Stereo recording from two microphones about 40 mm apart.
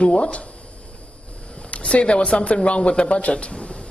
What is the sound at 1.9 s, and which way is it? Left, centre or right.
A man's voice, left.